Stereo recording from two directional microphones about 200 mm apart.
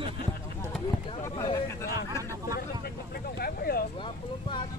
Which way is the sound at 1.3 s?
15° left (ahead or behind).